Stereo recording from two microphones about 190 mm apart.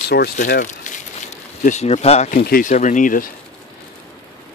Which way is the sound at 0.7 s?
40° left (ahead or behind).